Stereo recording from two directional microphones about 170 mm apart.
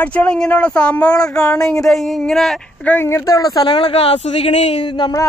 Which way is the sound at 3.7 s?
35° left (ahead or behind).